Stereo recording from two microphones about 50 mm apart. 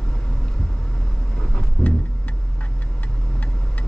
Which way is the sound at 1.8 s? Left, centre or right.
Centre.